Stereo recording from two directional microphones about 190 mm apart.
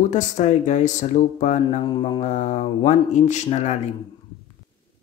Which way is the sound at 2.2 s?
40° left (ahead or behind).